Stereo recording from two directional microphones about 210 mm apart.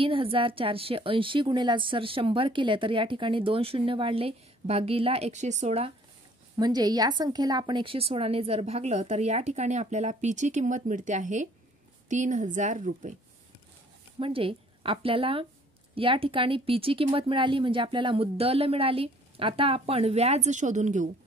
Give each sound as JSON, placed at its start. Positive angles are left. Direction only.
{"t": 0.0, "sound": "a woman's voice", "side_deg": -25}
{"t": 6.6, "sound": "a woman's voice", "side_deg": -20}
{"t": 14.2, "sound": "a woman's voice", "side_deg": -25}